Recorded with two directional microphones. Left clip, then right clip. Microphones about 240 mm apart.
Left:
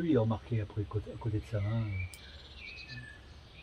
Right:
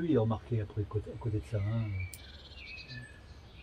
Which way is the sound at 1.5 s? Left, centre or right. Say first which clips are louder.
Left 3 dB; centre.